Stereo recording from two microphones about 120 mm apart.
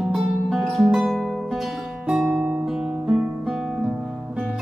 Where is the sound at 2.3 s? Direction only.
15° right (ahead or behind).